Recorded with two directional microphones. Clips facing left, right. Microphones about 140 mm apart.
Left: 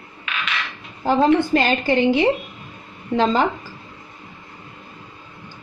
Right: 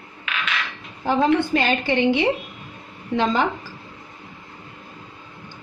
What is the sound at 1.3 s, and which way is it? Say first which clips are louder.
A woman's voice: left 2 dB; 40° left (ahead or behind).